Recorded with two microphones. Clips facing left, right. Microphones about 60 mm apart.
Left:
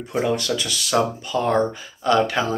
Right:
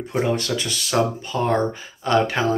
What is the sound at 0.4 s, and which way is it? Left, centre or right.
Speech, right.